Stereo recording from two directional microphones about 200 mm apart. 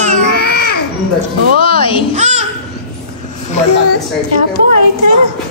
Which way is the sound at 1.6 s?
25° left (ahead or behind).